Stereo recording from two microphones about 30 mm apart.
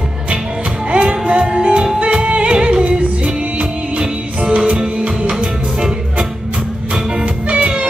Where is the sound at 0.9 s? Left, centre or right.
Right.